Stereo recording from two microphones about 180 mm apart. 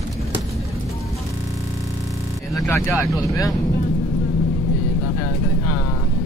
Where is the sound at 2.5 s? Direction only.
15° left (ahead or behind).